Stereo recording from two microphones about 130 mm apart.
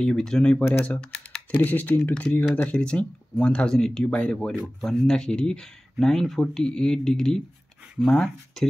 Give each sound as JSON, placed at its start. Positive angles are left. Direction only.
{"t": 0.0, "sound": "speech", "side_deg": 5}